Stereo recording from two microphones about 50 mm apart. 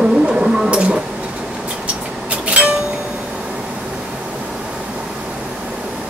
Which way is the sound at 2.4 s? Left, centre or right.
Right.